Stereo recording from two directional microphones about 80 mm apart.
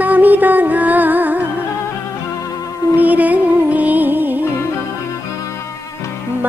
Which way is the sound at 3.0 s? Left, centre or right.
Centre.